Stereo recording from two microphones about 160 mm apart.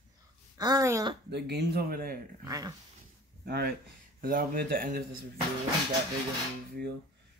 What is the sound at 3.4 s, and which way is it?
Speech, 75° right (ahead or behind).